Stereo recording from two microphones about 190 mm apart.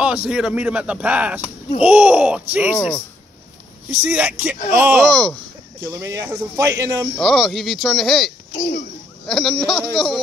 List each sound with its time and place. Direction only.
0.0 s speech: 5° right (ahead or behind)
3.9 s speech: 10° right (ahead or behind)
5.0 s speech: 5° left (ahead or behind)
5.8 s speech: 15° right (ahead or behind)
7.2 s speech: centre (ahead or behind)
8.5 s a child's voice: 45° left (ahead or behind)
9.3 s speech: centre (ahead or behind)